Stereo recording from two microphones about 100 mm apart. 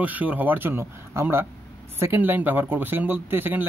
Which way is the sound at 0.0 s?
15° right (ahead or behind).